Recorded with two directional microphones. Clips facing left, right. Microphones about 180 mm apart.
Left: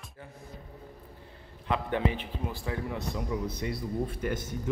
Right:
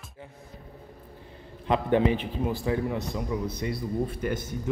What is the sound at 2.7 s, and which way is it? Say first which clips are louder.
A man's voice: right 6 dB; 20° right (ahead or behind).